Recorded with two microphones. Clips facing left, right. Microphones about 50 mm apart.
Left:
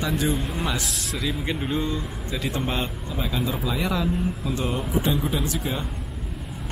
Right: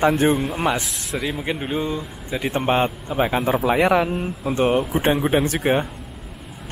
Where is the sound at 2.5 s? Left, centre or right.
Right.